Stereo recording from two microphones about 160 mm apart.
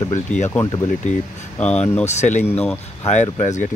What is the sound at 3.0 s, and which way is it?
Speech, 45° left (ahead or behind).